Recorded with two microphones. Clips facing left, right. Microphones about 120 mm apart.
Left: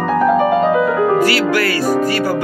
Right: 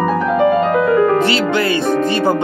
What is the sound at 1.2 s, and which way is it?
Music, 25° right (ahead or behind).